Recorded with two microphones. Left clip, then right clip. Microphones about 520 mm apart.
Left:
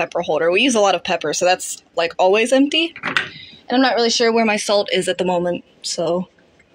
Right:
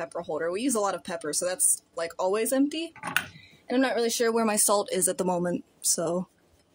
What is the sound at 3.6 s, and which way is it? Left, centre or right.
Speech, right.